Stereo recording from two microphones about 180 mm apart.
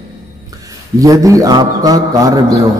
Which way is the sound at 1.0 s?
20° right (ahead or behind).